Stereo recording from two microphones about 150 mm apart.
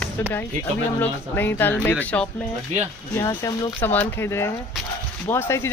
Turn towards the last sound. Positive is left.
turn(degrees=15)  # may be behind; listen again after turning